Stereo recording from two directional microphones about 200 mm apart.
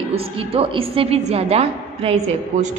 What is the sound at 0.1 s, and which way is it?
A woman's voice, 30° right (ahead or behind).